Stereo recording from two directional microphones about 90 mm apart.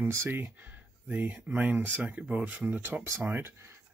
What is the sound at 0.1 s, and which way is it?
Speech, 25° right (ahead or behind).